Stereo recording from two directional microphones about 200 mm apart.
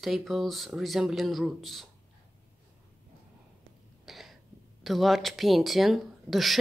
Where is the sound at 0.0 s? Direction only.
Centre (ahead or behind).